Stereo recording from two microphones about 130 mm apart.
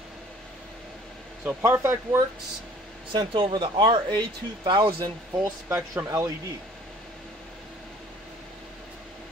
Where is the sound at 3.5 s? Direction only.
40° right (ahead or behind).